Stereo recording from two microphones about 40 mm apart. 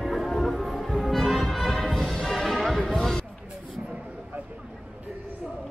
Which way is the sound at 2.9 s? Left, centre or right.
Centre.